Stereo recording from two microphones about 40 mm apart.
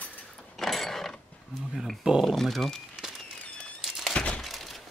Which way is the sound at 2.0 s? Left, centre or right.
Right.